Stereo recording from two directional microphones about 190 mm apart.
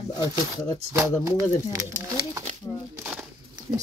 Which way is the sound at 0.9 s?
15° right (ahead or behind).